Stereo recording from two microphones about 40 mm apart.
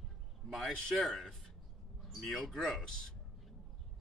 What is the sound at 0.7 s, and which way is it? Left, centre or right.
Speech, left.